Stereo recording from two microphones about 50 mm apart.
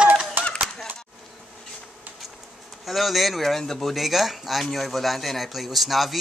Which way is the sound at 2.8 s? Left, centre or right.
Centre.